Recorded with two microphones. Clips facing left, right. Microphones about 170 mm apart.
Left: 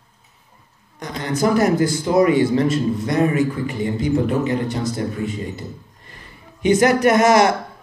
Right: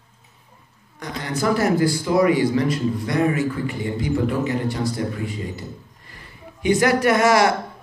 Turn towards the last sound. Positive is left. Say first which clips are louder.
# left 3 dB
turn(degrees=20)  # may be behind; listen again after turning